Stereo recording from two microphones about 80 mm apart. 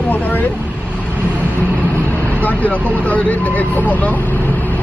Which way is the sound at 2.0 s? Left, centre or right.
Left.